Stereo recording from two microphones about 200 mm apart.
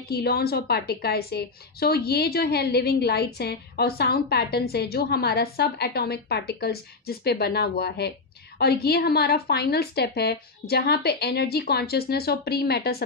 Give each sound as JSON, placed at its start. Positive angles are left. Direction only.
{"t": 0.1, "sound": "a woman's voice", "side_deg": 55}